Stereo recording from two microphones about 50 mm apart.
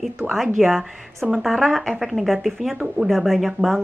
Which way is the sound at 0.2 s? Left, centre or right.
Right.